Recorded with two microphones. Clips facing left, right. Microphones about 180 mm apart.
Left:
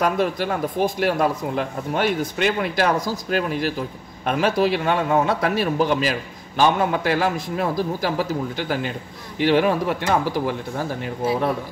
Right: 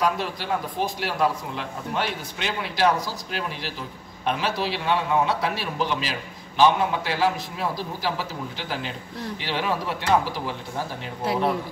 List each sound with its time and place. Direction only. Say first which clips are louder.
0.0 s a man's voice: left 5 dB; 50° left (ahead or behind)